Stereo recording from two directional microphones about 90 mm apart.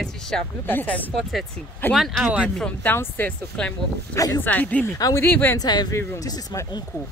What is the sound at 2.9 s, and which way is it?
Speech, 25° left (ahead or behind).